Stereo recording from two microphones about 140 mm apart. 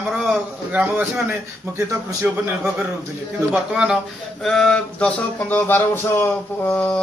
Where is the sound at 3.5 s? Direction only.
5° right (ahead or behind).